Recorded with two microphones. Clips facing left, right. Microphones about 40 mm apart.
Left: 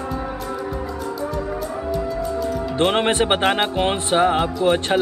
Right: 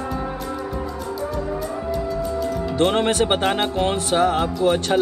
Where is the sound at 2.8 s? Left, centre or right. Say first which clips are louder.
Even; left.